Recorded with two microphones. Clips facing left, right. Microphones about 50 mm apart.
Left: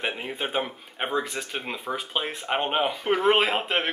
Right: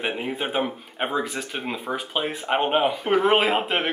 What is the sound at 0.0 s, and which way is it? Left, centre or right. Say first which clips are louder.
Speech: right 3 dB; centre.